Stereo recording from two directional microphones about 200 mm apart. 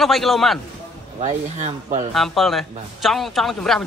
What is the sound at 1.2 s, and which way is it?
Speech, 35° right (ahead or behind).